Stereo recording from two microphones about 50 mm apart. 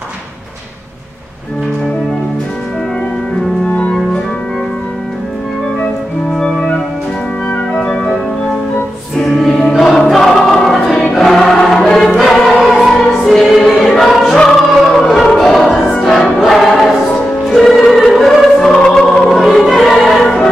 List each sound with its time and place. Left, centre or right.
3.6 s organ: left
6.3 s music: centre
7.7 s organ: centre
9.2 s choir: centre
11.1 s music: centre
12.2 s choir: centre
13.3 s music: centre
15.0 s choir: centre
17.5 s music: centre